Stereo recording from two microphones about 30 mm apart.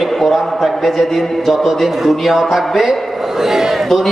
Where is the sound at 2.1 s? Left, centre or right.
Centre.